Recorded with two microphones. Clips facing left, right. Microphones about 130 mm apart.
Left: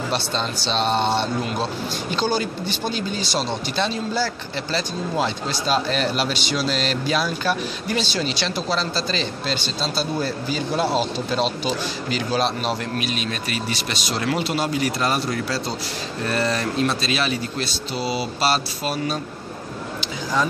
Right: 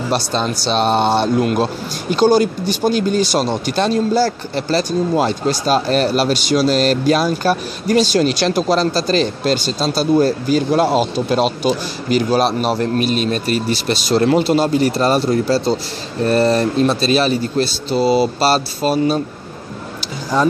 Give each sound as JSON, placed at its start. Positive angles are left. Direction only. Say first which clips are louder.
{"t": 0.4, "sound": "a man's voice", "louder": "right 6 dB", "side_deg": -50}
{"t": 13.1, "sound": "a man's voice", "louder": "right 9 dB", "side_deg": -40}